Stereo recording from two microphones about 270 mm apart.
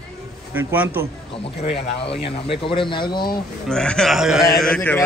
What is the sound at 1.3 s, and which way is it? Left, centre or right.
Speech, left.